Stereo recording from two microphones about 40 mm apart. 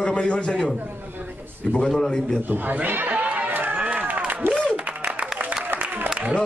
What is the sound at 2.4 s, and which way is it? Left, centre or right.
Speech, right.